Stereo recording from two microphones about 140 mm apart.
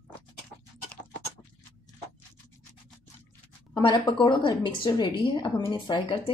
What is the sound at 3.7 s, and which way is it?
A woman's voice, 30° left (ahead or behind).